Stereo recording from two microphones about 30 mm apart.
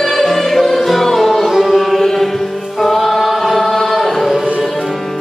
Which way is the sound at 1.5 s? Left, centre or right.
Centre.